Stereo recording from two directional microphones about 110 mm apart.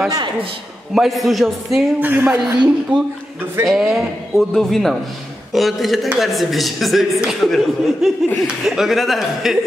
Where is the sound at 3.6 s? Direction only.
5° right (ahead or behind).